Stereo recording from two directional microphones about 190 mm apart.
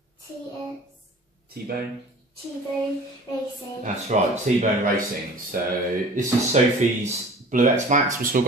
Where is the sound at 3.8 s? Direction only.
40° right (ahead or behind).